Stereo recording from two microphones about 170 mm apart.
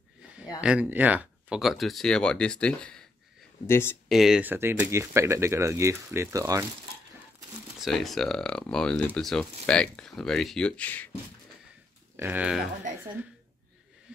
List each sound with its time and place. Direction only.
0.6 s speech: 5° right (ahead or behind); by 4.0 s 15° left (ahead or behind)
4.1 s speech: centre (ahead or behind); by 6.7 s 20° right (ahead or behind)
7.8 s speech: centre (ahead or behind)
12.2 s speech: 10° right (ahead or behind)